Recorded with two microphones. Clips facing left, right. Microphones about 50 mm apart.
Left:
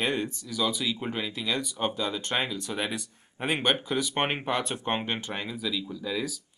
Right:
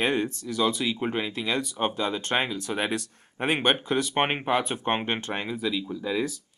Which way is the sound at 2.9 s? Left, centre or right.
Centre.